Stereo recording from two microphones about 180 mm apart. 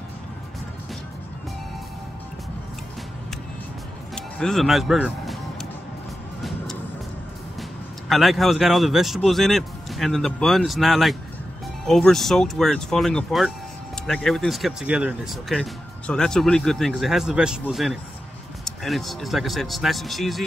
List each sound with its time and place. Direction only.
4.1 s music: 5° left (ahead or behind)
8.1 s speech: centre (ahead or behind)